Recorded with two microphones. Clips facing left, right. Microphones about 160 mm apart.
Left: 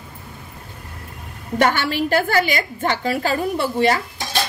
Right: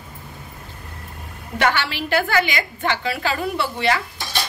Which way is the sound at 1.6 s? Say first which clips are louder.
Left 3 dB; 45° left (ahead or behind).